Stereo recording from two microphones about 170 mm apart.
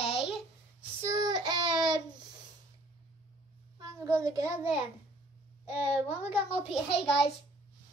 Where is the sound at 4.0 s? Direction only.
15° right (ahead or behind).